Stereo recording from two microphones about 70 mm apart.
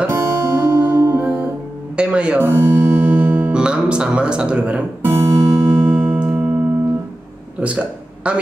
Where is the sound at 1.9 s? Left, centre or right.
Centre.